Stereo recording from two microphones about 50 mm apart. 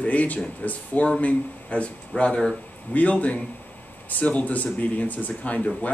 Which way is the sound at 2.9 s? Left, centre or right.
Left.